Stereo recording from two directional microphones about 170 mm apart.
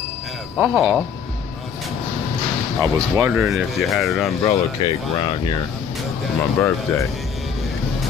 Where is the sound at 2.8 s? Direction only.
15° right (ahead or behind).